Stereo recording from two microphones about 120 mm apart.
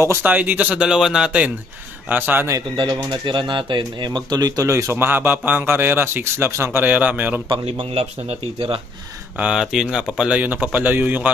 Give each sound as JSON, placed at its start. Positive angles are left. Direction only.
{"t": 0.0, "sound": "speech", "side_deg": -15}
{"t": 2.7, "sound": "speech", "side_deg": -40}
{"t": 7.4, "sound": "a man's voice", "side_deg": -45}
{"t": 9.4, "sound": "speech", "side_deg": -5}